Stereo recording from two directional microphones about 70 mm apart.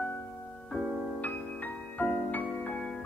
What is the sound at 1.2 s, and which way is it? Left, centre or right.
Music, left.